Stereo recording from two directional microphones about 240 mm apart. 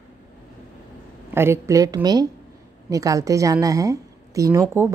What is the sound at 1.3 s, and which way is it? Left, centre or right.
A woman's voice, centre.